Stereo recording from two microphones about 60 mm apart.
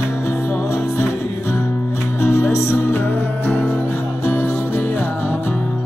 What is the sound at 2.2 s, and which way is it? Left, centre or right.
Music, left.